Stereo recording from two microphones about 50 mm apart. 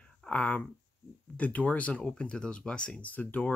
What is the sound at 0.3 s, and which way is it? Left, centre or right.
Speech, left.